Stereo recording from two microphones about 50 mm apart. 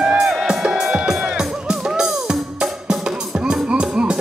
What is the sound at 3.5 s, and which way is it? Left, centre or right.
Music, centre.